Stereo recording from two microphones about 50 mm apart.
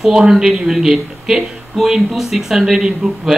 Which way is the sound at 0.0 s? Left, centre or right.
Centre.